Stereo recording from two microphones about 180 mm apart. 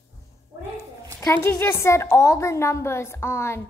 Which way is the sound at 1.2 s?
15° left (ahead or behind).